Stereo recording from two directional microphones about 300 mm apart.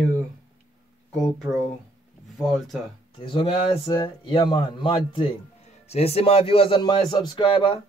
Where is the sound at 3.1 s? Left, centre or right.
Centre.